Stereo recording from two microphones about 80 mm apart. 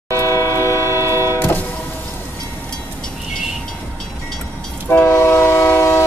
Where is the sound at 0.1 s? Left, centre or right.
Left.